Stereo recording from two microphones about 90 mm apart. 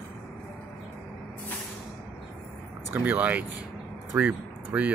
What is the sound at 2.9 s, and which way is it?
Speech, 20° right (ahead or behind).